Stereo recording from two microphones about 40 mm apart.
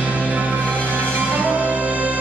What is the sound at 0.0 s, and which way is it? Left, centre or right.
Music, right.